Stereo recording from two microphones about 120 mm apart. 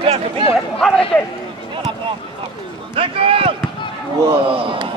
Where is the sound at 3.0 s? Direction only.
50° right (ahead or behind).